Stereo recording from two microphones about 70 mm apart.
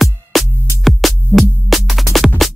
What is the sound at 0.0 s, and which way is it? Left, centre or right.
Music, centre.